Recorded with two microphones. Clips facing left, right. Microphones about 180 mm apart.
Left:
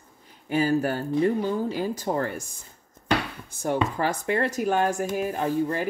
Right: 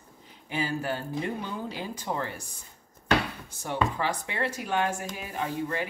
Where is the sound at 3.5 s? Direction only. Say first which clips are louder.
Left 4 dB; 45° left (ahead or behind).